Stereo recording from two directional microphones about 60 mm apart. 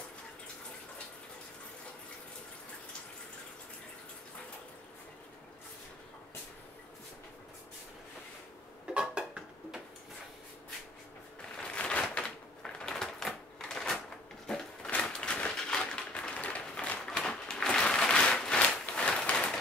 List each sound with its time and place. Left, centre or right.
8.8 s dishes: centre
11.6 s crushing: centre
12.1 s typewriter: centre
15.0 s a sound: centre